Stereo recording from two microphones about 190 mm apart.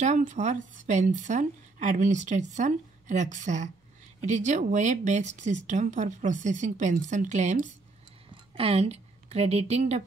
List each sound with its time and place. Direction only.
0.0 s a woman's voice: 40° right (ahead or behind)